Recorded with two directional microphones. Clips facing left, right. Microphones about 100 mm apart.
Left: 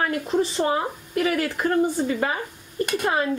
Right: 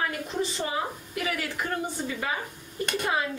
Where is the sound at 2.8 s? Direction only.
50° left (ahead or behind).